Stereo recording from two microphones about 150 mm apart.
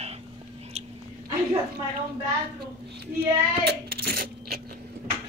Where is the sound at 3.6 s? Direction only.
90° right.